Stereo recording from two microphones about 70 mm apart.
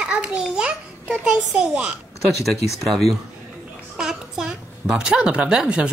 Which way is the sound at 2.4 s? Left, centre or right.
Centre.